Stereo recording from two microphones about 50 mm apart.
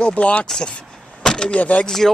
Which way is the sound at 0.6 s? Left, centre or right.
Centre.